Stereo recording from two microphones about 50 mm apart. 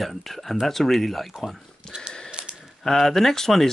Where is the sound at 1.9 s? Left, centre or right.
Centre.